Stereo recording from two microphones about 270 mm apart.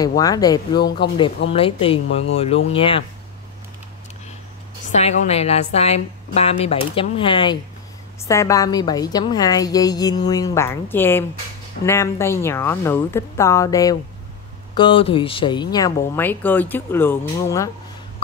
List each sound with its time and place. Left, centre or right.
0.2 s a woman's voice: centre
0.7 s speech: left
1.5 s a woman's voice: left
4.9 s a woman's voice: left